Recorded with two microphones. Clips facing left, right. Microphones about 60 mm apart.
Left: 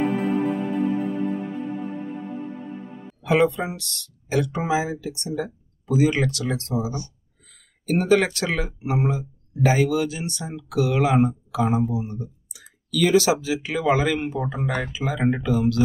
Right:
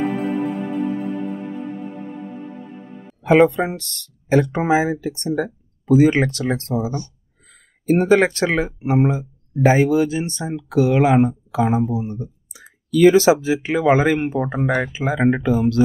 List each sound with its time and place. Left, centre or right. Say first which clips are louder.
0.0 s music: right 1 dB; centre
3.3 s speech: right 6 dB; right